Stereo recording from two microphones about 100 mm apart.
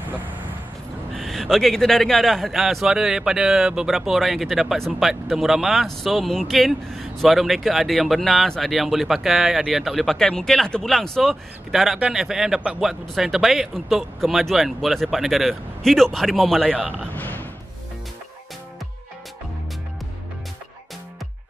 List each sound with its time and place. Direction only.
1.1 s a man's voice: centre (ahead or behind)
16.7 s speech: 15° right (ahead or behind)
17.1 s frog: 20° left (ahead or behind)